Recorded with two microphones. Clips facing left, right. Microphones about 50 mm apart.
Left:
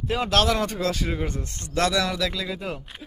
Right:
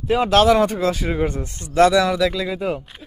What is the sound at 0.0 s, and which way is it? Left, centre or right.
Speech, centre.